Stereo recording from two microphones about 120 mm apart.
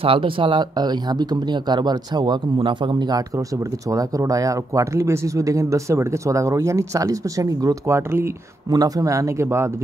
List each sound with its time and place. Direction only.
0.0 s speech: 45° right (ahead or behind); by 9.7 s 25° right (ahead or behind)